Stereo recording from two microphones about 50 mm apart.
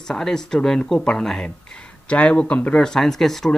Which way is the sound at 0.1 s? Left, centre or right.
Centre.